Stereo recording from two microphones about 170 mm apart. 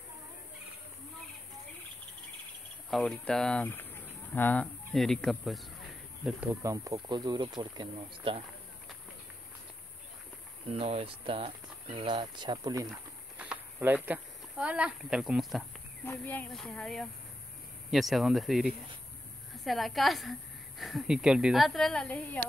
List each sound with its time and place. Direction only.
2.9 s speech: 5° left (ahead or behind)
6.2 s speech: 10° right (ahead or behind); by 8.5 s 30° right (ahead or behind)
10.7 s speech: 35° right (ahead or behind)
13.4 s speech: 10° right (ahead or behind)
16.1 s speech: 10° left (ahead or behind)